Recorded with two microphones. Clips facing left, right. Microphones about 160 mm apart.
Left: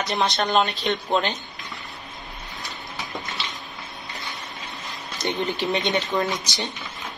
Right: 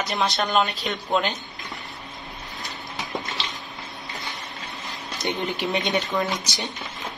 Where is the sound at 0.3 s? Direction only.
Centre (ahead or behind).